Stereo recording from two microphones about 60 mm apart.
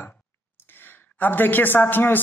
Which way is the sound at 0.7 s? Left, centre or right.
Left.